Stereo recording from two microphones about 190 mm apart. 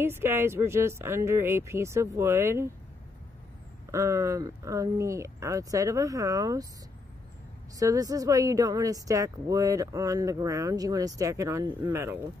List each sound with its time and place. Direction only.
0.0 s a woman's voice: 10° right (ahead or behind)
3.9 s a woman's voice: 15° right (ahead or behind)
7.8 s a woman's voice: 20° right (ahead or behind)